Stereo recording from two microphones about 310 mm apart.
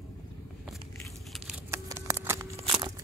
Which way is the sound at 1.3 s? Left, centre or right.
Centre.